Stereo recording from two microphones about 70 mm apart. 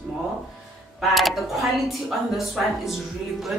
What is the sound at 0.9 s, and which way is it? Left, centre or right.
A woman's voice, centre.